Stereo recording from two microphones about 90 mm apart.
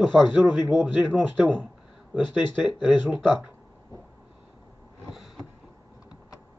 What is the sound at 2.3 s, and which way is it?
Speech, 60° left (ahead or behind).